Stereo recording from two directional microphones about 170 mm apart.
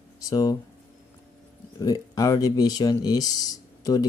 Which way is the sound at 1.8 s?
20° left (ahead or behind).